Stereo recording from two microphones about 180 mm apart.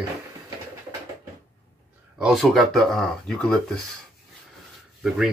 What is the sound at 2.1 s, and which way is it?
Speech, centre (ahead or behind).